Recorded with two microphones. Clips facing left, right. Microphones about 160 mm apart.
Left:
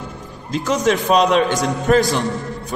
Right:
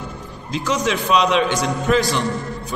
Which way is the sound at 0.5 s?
45° left (ahead or behind).